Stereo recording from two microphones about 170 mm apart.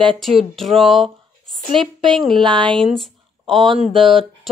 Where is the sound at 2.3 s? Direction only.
30° right (ahead or behind).